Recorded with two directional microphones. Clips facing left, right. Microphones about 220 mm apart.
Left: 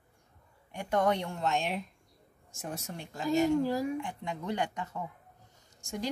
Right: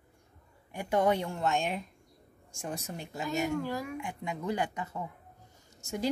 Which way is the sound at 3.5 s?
30° left (ahead or behind).